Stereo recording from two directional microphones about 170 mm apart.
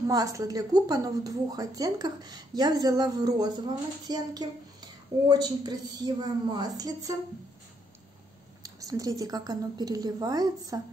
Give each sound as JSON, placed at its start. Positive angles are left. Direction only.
{"t": 0.0, "sound": "a woman's voice", "side_deg": -20}
{"t": 8.6, "sound": "a woman's voice", "side_deg": -20}